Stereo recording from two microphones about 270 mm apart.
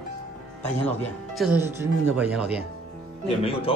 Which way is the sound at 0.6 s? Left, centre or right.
Centre.